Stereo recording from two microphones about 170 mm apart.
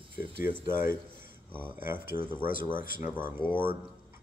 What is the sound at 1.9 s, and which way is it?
Speech, 10° right (ahead or behind).